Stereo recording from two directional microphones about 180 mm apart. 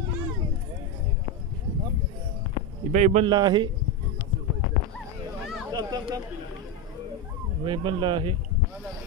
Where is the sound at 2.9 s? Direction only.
40° right (ahead or behind).